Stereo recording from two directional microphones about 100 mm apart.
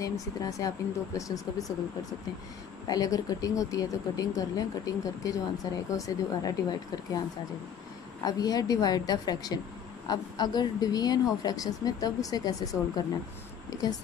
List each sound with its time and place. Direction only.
0.0 s speech: 35° left (ahead or behind)
2.9 s a woman's voice: 40° left (ahead or behind)